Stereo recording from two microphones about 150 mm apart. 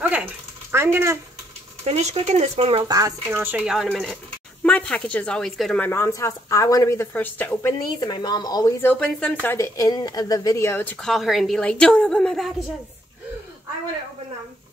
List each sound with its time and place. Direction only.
0.7 s speech: 15° right (ahead or behind)
1.9 s speech: 45° right (ahead or behind)
2.8 s a woman's voice: 25° right (ahead or behind)
3.6 s a woman's voice: centre (ahead or behind)
5.9 s speech: 15° left (ahead or behind)
7.2 s a woman's voice: 10° left (ahead or behind)
8.0 s speech: 30° left (ahead or behind)
8.8 s a woman's voice: 10° left (ahead or behind)